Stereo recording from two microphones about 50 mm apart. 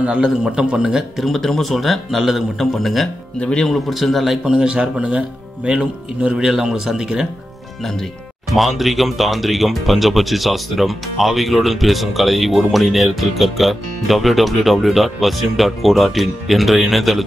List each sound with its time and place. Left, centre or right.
0.0 s a man's voice: centre
1.2 s speech: centre
3.3 s speech: left
3.6 s a man's voice: centre
6.3 s a man's voice: centre
8.5 s speech: centre